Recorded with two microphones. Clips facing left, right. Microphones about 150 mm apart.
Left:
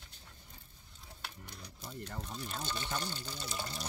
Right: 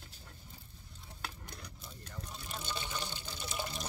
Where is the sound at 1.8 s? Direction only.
70° left (ahead or behind).